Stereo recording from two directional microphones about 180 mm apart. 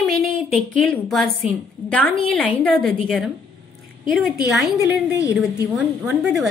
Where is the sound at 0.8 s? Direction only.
Centre (ahead or behind).